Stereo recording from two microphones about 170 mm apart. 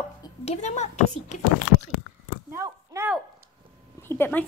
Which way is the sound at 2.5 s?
15° right (ahead or behind).